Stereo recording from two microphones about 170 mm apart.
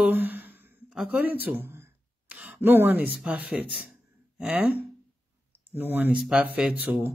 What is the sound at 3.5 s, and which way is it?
Speech, 10° right (ahead or behind).